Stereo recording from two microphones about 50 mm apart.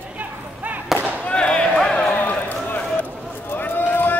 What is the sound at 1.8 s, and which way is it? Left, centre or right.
Run, centre.